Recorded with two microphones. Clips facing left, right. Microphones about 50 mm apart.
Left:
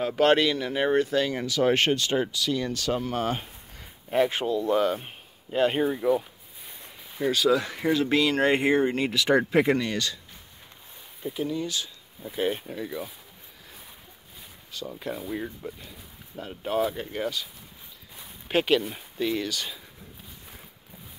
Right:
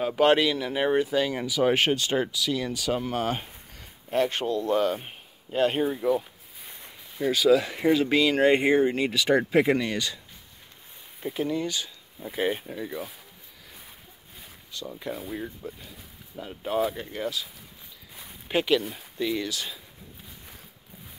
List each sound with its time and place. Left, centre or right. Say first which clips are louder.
0.0 s speech: even; centre
3.7 s speech: left 2 dB; centre
7.2 s speech: right 2 dB; centre
9.8 s speech: even; centre
11.2 s speech: right 1 dB; right
12.4 s speech: even; centre
14.7 s speech: left 1 dB; centre
18.6 s speech: left 1 dB; centre
19.4 s speech: left 1 dB; centre